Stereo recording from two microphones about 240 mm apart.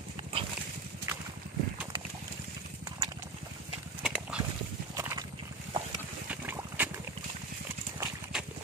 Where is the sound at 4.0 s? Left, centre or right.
Centre.